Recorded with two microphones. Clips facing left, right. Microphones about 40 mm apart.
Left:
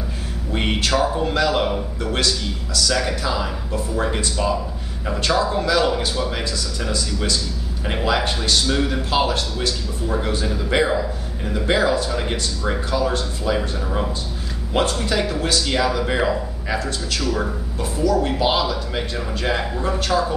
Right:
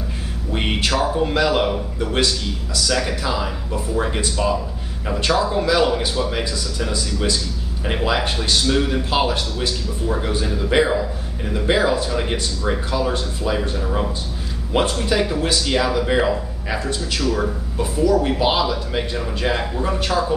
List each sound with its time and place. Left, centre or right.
0.5 s a sound: centre
0.9 s a man's voice: centre
1.2 s speech: centre
2.9 s a man's voice: centre
8.6 s speech: centre
10.0 s a man's voice: centre
16.7 s a man's voice: centre
17.2 s a man's voice: centre
17.9 s a man's voice: centre